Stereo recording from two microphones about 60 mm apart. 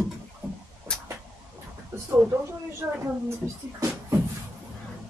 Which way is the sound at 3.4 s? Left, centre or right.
Right.